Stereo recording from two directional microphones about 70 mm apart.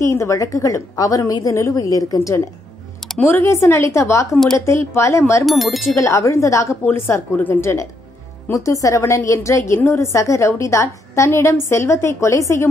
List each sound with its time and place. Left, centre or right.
0.0 s a woman's voice: left
1.8 s a woman's voice: left
3.4 s a woman's voice: left
5.4 s speech: centre
5.9 s a woman's voice: left
7.6 s a woman's voice: left